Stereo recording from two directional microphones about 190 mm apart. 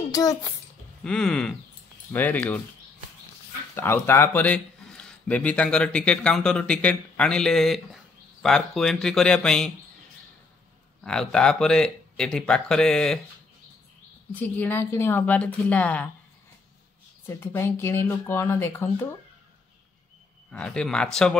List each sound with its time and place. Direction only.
0.1 s speech: 20° left (ahead or behind)
1.0 s speech: 5° left (ahead or behind)
3.7 s speech: 10° left (ahead or behind)
11.1 s speech: 5° left (ahead or behind)
14.3 s speech: 10° left (ahead or behind)
17.3 s speech: 15° left (ahead or behind)
20.5 s speech: 5° left (ahead or behind)